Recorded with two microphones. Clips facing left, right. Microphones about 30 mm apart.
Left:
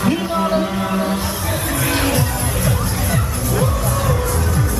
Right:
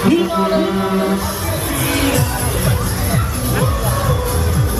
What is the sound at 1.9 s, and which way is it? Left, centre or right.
Music, centre.